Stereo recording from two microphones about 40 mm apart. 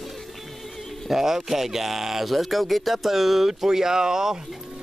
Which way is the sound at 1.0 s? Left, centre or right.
Centre.